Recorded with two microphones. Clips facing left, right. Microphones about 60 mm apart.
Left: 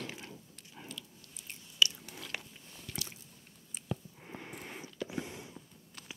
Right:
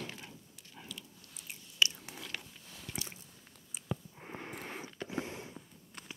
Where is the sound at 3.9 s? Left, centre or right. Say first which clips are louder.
Even; right.